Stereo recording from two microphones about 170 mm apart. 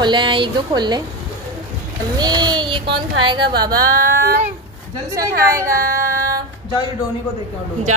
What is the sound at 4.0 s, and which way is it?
Child singing, 65° right (ahead or behind).